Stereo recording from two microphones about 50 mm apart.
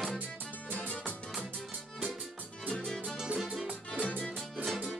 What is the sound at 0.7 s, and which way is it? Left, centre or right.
Music, left.